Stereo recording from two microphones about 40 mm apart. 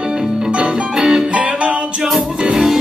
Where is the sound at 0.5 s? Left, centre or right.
Centre.